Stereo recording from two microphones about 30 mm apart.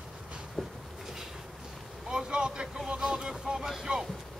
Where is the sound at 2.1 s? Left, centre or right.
Right.